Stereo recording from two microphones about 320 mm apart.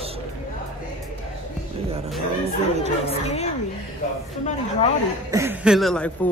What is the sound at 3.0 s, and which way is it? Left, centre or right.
Speech, centre.